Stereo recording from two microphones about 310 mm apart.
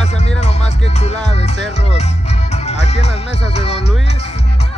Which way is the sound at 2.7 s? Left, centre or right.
Left.